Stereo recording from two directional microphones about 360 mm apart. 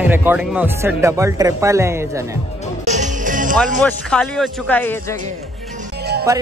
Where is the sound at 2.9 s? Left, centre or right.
Centre.